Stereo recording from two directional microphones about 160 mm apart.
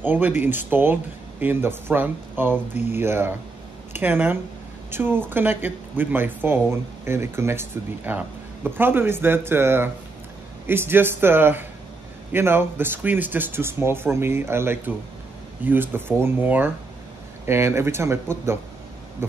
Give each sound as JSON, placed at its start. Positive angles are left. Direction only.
{"t": 0.0, "sound": "speech", "side_deg": -10}